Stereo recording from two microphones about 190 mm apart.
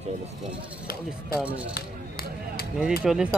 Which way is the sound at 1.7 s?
50° left (ahead or behind).